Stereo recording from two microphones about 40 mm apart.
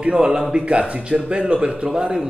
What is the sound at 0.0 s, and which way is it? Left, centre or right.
A man's voice, right.